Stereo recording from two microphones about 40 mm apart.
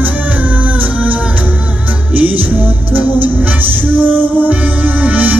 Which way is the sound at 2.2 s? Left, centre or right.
Right.